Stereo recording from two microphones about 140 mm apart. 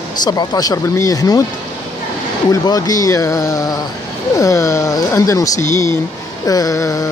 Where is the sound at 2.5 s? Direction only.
25° left (ahead or behind).